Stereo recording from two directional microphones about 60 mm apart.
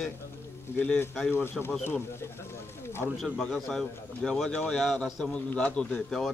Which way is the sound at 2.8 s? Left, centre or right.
Left.